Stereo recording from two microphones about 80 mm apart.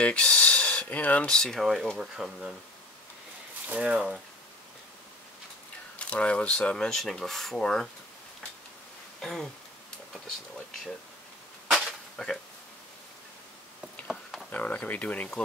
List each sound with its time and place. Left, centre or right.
0.0 s speech: centre
3.6 s speech: centre
5.9 s speech: centre
9.2 s speech: centre
12.2 s speech: centre
14.5 s speech: centre